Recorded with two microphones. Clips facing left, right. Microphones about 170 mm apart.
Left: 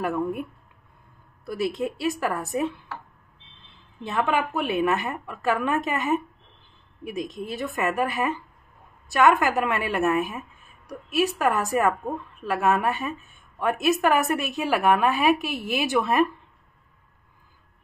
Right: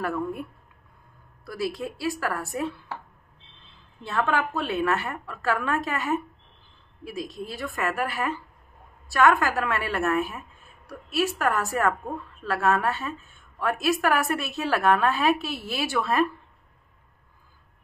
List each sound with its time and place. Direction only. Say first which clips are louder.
0.0 s a woman's voice: left 3 dB; 20° left (ahead or behind)
4.0 s a woman's voice: left 1 dB; 15° left (ahead or behind)